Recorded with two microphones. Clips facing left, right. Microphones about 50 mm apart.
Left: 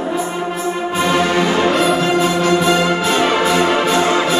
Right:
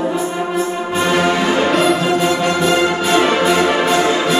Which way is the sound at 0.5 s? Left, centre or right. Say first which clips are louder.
Right 1 dB; centre.